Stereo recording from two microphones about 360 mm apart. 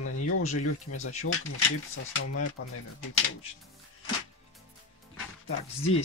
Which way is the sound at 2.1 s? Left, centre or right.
Left.